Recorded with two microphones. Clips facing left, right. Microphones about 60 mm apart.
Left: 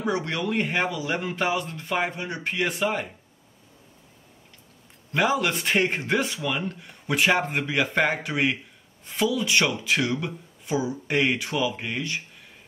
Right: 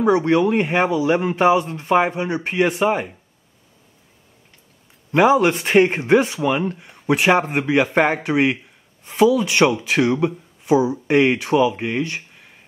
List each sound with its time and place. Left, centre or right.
0.0 s speech: right
5.1 s speech: right